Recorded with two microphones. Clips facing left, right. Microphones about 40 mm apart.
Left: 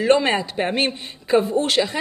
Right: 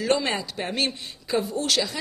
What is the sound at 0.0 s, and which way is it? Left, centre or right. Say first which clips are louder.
Speech: left 7 dB; left.